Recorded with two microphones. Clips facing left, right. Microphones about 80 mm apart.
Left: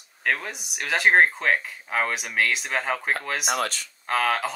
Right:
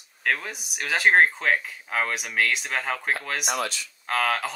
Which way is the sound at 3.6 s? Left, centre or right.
Left.